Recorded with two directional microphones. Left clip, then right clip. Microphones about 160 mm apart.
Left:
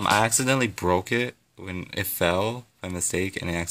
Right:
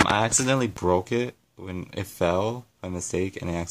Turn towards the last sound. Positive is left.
turn(degrees=0)  # may be behind; listen again after turning